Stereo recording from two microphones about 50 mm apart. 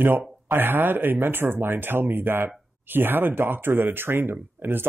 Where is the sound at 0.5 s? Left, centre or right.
Right.